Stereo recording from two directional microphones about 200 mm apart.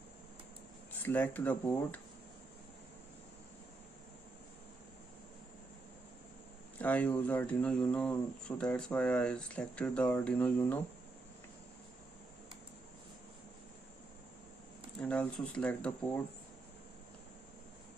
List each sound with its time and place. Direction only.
1.0 s speech: 10° left (ahead or behind)
6.8 s speech: 10° left (ahead or behind)
15.0 s speech: 5° left (ahead or behind)